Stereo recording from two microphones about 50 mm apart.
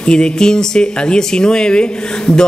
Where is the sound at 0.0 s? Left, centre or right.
Centre.